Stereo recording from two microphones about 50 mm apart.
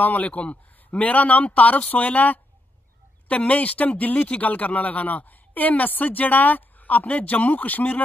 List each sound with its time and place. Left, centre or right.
0.0 s speech: left